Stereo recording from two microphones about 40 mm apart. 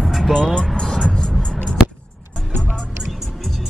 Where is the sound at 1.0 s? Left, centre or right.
Left.